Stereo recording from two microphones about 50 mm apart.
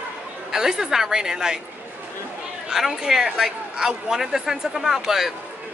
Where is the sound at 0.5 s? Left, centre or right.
Centre.